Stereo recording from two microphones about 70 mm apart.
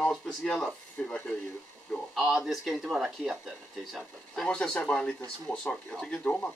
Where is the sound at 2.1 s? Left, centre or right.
Centre.